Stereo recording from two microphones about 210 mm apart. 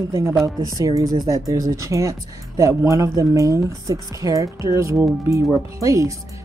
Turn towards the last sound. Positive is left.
turn(degrees=-15)  # may be behind; listen again after turning